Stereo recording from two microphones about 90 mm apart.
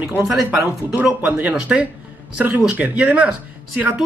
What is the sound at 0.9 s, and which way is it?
Speech, 15° right (ahead or behind).